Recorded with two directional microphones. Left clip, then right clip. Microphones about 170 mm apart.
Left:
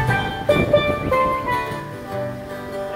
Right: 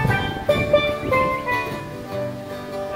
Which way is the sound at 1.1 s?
5° left (ahead or behind).